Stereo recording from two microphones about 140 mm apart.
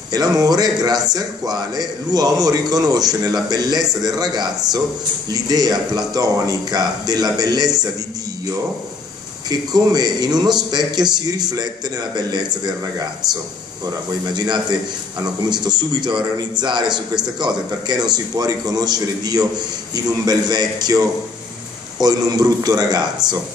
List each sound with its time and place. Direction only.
0.1 s a man's voice: 25° right (ahead or behind)
9.5 s a man's voice: 30° right (ahead or behind)
13.8 s a man's voice: 30° right (ahead or behind)